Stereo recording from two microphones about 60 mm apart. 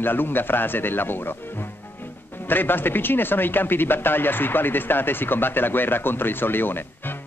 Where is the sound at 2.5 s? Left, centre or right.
Left.